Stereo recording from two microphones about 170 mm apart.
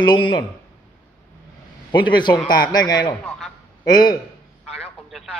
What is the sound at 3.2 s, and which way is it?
Speech, 5° left (ahead or behind).